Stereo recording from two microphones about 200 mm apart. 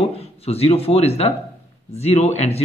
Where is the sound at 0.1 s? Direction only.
30° left (ahead or behind).